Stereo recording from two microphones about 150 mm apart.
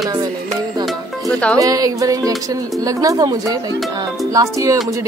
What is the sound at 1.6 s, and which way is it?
Speech, 25° right (ahead or behind).